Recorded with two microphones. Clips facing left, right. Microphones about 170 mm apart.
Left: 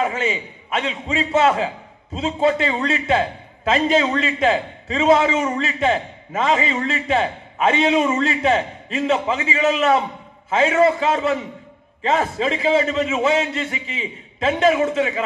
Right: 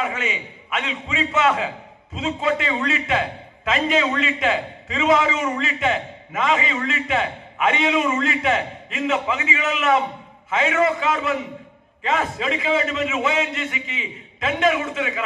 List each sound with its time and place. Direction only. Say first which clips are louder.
0.0 s a man's voice: left 4 dB; 35° left (ahead or behind)